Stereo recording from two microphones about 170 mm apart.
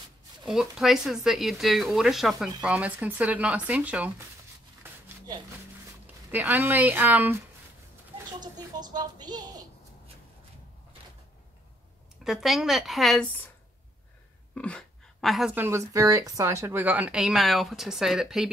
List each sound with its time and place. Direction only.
0.5 s speech: centre (ahead or behind)
6.3 s speech: 10° right (ahead or behind)
8.4 s a child's voice: 25° right (ahead or behind)
12.3 s speech: centre (ahead or behind)
14.5 s a sound: 5° left (ahead or behind)
15.5 s speech: 15° right (ahead or behind)